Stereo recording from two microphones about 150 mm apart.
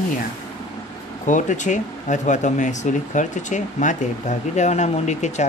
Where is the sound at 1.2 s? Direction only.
55° left (ahead or behind).